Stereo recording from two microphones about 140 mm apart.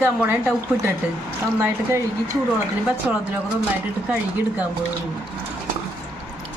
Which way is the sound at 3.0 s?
10° right (ahead or behind).